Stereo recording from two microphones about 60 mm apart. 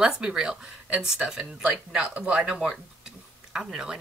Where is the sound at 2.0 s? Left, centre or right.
Right.